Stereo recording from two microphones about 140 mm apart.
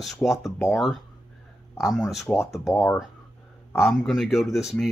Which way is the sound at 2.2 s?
20° left (ahead or behind).